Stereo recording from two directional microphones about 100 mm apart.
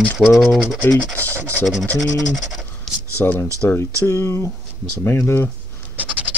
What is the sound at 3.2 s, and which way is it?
Speech, 20° left (ahead or behind).